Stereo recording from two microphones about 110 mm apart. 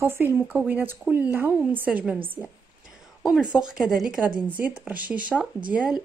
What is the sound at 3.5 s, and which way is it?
Speech, 5° right (ahead or behind).